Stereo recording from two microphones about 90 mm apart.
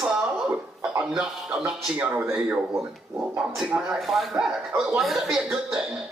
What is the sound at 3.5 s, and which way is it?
A man's voice, 5° right (ahead or behind).